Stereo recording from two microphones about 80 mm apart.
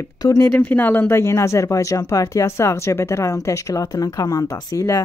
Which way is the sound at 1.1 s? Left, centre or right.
Left.